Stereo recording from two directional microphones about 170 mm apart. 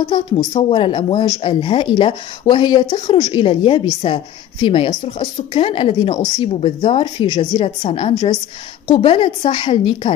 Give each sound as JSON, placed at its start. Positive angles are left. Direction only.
{"t": 0.5, "sound": "a woman's voice", "side_deg": 35}